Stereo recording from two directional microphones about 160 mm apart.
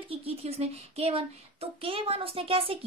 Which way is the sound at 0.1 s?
40° right (ahead or behind).